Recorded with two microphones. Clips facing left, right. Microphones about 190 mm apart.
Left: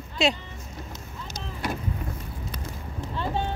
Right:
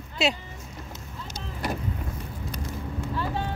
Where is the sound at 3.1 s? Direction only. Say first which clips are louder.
Left 2 dB; 25° left (ahead or behind).